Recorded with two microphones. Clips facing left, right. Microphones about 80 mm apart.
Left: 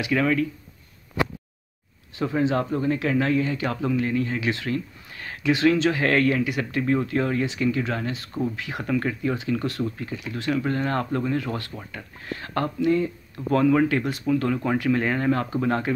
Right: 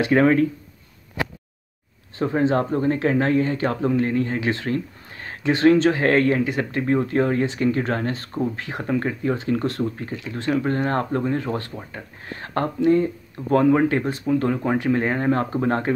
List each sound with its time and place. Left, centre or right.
0.0 s speech: right
2.1 s speech: right